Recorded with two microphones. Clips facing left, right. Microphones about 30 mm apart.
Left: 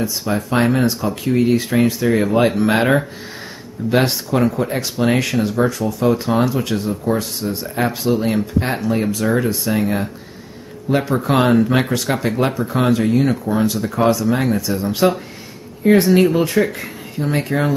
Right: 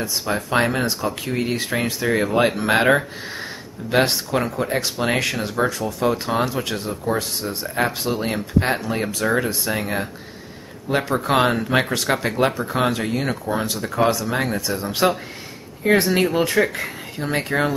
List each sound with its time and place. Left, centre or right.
0.0 s speech: centre